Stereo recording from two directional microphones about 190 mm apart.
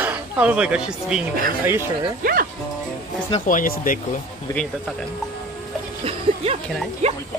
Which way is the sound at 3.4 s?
45° left (ahead or behind).